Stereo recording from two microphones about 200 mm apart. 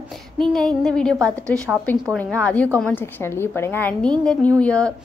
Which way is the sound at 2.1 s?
5° left (ahead or behind).